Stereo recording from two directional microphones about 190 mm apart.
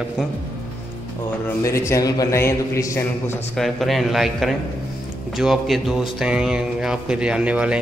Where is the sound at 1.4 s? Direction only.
15° left (ahead or behind).